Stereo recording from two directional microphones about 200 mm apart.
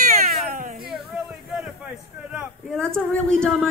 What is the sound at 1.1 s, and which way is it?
Speech, 5° right (ahead or behind).